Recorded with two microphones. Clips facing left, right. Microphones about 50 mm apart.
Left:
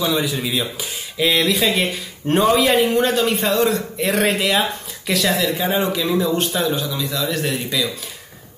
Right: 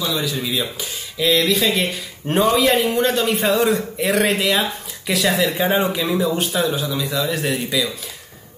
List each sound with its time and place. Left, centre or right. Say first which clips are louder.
0.0 s a man's voice: left 2 dB; centre
5.4 s speech: right 1 dB; right
6.0 s a man's voice: left 1 dB; centre